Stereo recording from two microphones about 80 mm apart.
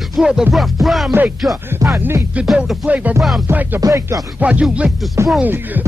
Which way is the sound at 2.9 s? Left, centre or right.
Centre.